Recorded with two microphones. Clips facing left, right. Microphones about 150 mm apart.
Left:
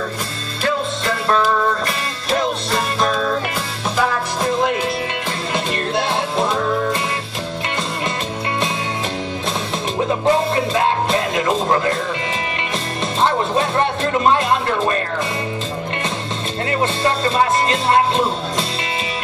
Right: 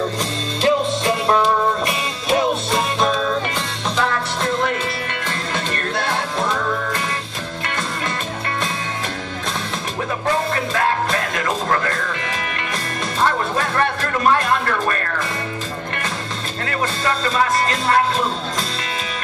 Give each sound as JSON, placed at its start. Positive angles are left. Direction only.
{"t": 0.6, "sound": "music", "side_deg": -20}
{"t": 2.2, "sound": "music", "side_deg": -5}
{"t": 9.9, "sound": "music", "side_deg": 20}
{"t": 13.2, "sound": "music", "side_deg": 20}
{"t": 16.6, "sound": "music", "side_deg": 25}